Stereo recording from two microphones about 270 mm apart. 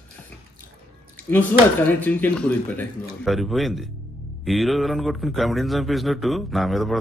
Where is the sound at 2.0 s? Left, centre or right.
Centre.